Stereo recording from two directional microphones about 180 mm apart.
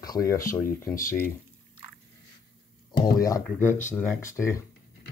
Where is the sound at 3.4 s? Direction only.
10° left (ahead or behind).